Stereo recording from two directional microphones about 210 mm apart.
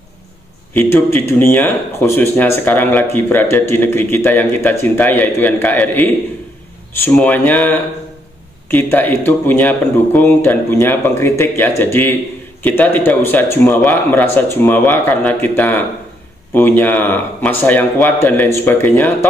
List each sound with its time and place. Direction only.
0.7 s speech: 10° left (ahead or behind)